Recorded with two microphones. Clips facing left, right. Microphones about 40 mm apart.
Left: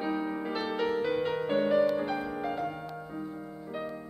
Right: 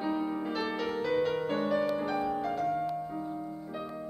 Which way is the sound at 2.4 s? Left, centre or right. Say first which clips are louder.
Right 3 dB; centre.